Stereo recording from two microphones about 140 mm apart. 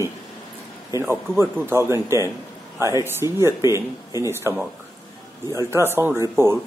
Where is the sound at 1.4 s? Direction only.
15° right (ahead or behind).